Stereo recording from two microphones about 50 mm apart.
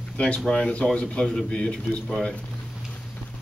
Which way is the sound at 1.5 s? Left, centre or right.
Left.